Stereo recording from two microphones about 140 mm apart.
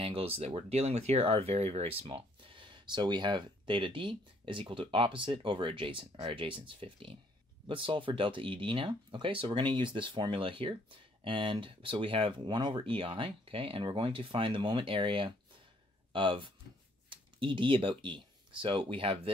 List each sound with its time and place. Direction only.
0.0 s speech: 40° right (ahead or behind)